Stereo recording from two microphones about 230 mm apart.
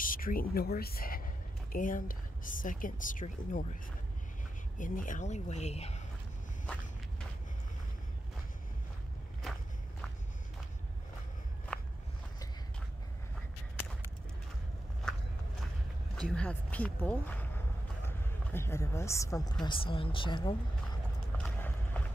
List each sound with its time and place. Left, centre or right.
0.0 s speech: left
4.7 s a woman's voice: left
9.4 s walk: centre
11.7 s walk: centre
16.2 s speech: centre; by 21.0 s left
21.4 s a sound: centre